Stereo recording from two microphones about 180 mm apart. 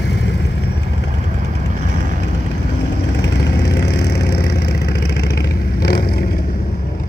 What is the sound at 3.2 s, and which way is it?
Vehicle, 70° left (ahead or behind).